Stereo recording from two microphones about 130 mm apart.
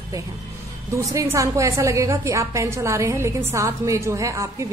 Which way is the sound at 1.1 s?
25° right (ahead or behind).